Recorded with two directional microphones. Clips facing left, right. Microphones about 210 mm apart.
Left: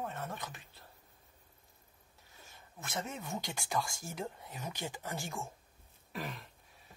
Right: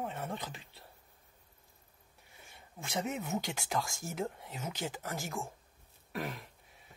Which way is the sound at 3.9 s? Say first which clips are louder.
Right 4 dB; 25° right (ahead or behind).